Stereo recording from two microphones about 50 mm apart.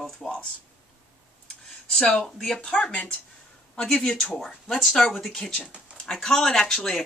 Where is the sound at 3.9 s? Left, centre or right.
Centre.